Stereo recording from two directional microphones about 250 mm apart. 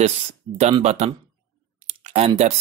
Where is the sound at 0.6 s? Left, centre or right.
Right.